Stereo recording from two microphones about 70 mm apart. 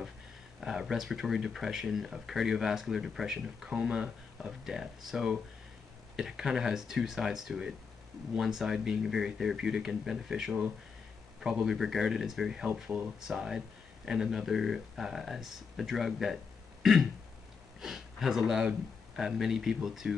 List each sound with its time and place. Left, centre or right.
0.6 s speech: centre